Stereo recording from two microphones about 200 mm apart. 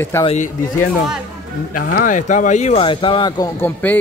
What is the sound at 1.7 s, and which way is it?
Speech, 45° left (ahead or behind).